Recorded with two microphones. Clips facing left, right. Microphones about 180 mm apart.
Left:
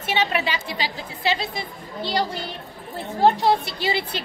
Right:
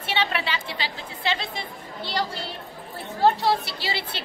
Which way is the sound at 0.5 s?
10° left (ahead or behind).